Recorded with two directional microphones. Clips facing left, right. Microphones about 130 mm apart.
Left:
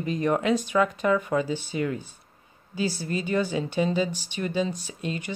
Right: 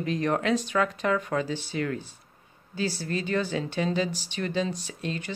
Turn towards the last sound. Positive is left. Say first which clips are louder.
# left 1 dB
turn(degrees=10)  # may be behind; listen again after turning